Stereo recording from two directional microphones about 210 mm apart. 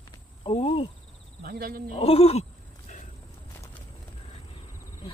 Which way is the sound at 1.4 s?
45° right (ahead or behind).